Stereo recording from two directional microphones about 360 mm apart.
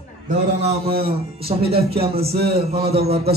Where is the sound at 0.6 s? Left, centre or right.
Centre.